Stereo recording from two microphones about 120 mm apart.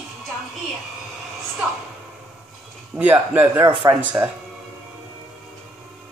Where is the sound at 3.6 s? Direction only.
40° right (ahead or behind).